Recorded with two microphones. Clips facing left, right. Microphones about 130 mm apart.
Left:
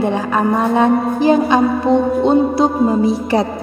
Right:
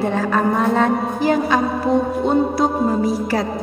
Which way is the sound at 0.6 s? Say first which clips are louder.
Left 3 dB; 15° left (ahead or behind).